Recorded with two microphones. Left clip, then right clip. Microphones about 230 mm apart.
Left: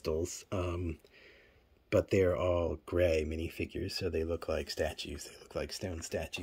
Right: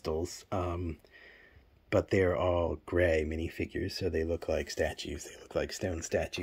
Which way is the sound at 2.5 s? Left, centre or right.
Left.